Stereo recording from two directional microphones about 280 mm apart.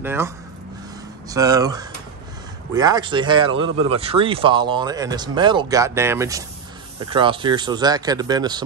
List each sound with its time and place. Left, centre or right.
0.0 s speech: centre
1.3 s speech: centre